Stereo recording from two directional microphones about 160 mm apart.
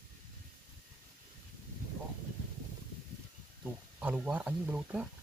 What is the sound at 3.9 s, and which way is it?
Speech, 10° right (ahead or behind).